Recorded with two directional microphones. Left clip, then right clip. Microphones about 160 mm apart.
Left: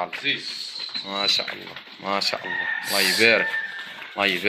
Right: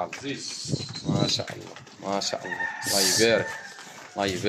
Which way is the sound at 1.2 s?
15° right (ahead or behind).